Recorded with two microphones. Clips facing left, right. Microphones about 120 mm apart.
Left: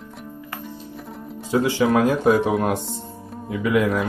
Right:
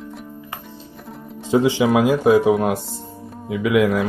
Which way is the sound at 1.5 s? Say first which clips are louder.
Right 4 dB; 20° right (ahead or behind).